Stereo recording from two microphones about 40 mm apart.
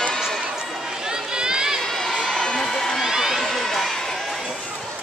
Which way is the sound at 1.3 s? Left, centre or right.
Centre.